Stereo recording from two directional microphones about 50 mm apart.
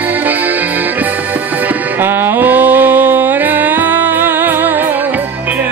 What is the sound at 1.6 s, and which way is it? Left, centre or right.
Music, right.